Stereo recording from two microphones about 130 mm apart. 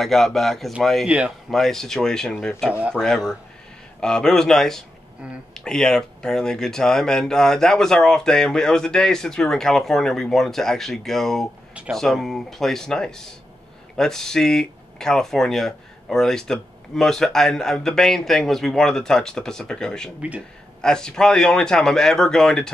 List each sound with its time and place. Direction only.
0.0 s speech: centre (ahead or behind)
1.0 s speech: 10° right (ahead or behind)
1.5 s speech: 5° left (ahead or behind)
2.7 s speech: 10° right (ahead or behind)
4.0 s speech: 5° left (ahead or behind)
20.2 s speech: 10° right (ahead or behind)
20.8 s speech: 5° left (ahead or behind)